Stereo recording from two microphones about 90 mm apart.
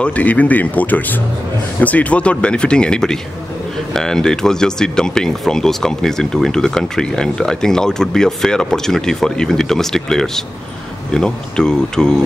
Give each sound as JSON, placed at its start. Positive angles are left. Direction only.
{"t": 0.0, "sound": "speech", "side_deg": 15}